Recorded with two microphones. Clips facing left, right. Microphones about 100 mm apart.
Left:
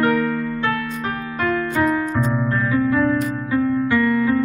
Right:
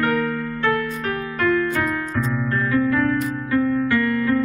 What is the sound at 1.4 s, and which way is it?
Music, 25° left (ahead or behind).